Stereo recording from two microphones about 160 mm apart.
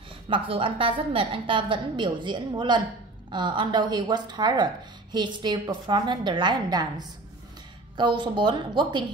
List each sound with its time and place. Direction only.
0.3 s a woman's voice: 35° right (ahead or behind)